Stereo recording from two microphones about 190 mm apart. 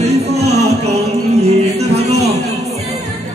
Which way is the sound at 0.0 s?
35° right (ahead or behind).